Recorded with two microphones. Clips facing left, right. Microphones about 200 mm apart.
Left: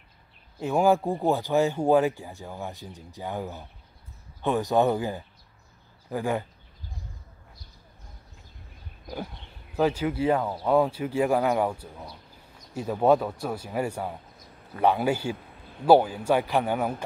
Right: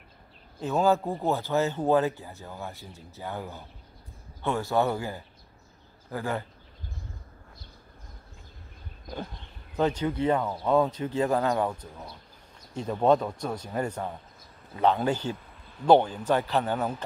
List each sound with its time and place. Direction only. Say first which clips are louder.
0.6 s speech: left 2 dB; 15° left (ahead or behind)
9.8 s speech: left 2 dB; 10° left (ahead or behind)